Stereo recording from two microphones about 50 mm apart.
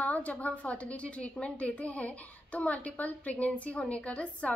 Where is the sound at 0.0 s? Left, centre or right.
Left.